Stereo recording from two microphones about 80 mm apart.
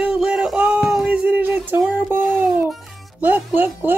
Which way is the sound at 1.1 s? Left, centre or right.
Centre.